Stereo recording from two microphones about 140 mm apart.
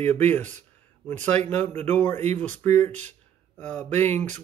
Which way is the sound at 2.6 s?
55° right (ahead or behind).